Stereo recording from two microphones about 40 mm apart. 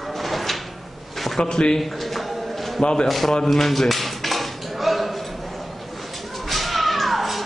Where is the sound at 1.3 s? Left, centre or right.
Centre.